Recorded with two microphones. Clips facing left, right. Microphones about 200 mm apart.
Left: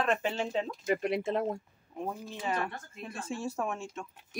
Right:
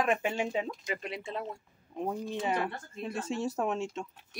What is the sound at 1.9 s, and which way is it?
Speech, 15° right (ahead or behind).